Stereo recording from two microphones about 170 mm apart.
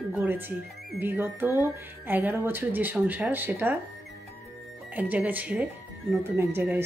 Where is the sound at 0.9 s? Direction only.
10° right (ahead or behind).